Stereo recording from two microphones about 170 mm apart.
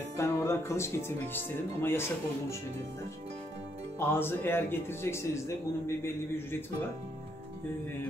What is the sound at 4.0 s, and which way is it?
Speech, 15° left (ahead or behind).